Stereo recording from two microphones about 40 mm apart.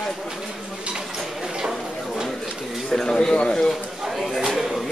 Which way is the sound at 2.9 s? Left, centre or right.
Centre.